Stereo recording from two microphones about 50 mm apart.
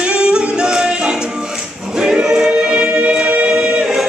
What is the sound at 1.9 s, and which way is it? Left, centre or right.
Choir, centre.